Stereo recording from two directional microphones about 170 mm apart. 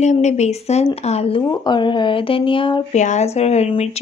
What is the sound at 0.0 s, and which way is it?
A woman's voice, 45° left (ahead or behind).